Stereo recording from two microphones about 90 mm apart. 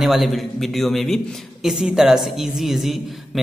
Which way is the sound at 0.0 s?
Centre (ahead or behind).